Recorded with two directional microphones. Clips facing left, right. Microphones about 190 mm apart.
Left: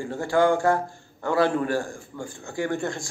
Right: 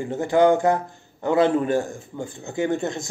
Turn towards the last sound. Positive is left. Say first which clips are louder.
# right 3 dB
turn(degrees=-20)  # may be behind; listen again after turning